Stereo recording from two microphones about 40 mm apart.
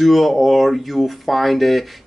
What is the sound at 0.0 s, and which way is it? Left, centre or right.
Speech, centre.